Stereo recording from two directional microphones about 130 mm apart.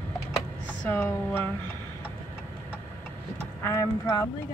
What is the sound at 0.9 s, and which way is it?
Speech, 15° left (ahead or behind).